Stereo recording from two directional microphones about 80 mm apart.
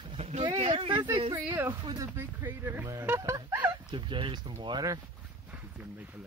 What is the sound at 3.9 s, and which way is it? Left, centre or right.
Speech, right.